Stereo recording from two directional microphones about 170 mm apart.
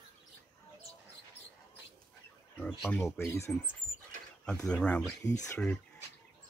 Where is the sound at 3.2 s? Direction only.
15° left (ahead or behind).